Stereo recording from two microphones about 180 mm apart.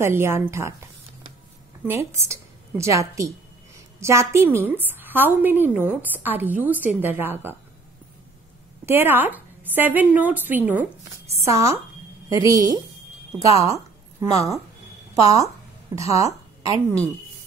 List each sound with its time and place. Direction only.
0.0 s a woman's voice: 15° right (ahead or behind)
2.2 s a woman's voice: 15° right (ahead or behind)
8.8 s a woman's voice: 10° right (ahead or behind)